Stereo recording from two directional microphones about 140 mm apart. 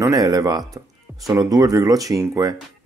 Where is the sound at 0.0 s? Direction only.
25° right (ahead or behind).